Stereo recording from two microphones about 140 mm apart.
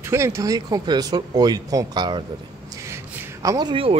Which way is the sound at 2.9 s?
25° right (ahead or behind).